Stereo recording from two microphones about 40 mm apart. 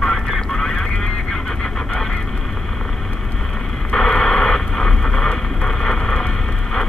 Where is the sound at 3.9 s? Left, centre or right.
Centre.